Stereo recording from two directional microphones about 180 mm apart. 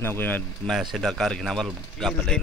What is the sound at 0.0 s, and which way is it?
Speech, 10° left (ahead or behind).